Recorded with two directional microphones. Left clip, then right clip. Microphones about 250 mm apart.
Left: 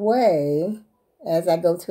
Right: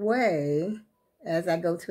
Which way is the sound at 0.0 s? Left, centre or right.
Centre.